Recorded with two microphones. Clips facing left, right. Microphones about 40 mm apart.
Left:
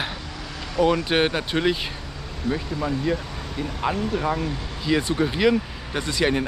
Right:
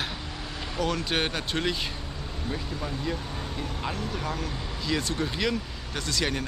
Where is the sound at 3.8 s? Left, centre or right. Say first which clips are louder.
Left 10 dB; left.